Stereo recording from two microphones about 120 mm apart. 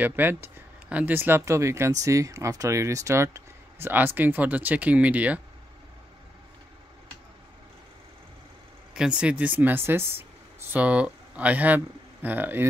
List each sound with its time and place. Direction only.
0.0 s speech: 15° right (ahead or behind)
8.9 s speech: 10° right (ahead or behind)